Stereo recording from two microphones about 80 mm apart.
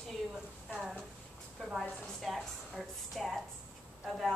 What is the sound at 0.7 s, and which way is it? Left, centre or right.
Speech, centre.